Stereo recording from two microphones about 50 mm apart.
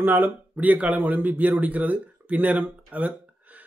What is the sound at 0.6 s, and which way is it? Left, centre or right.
Speech, right.